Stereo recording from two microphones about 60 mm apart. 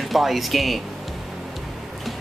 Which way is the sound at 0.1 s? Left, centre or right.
Centre.